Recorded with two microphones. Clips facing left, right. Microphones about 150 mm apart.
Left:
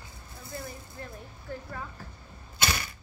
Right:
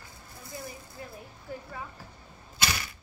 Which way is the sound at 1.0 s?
10° right (ahead or behind).